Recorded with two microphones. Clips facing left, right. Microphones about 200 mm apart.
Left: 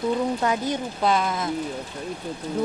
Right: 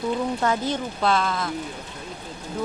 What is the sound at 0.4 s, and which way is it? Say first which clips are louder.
Speech: even; 15° left (ahead or behind).